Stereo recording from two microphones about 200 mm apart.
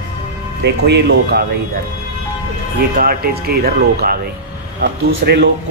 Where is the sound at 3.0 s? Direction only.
50° right (ahead or behind).